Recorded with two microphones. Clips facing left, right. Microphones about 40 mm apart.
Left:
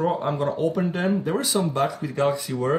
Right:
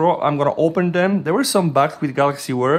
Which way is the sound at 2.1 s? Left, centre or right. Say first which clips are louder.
Right 5 dB; right.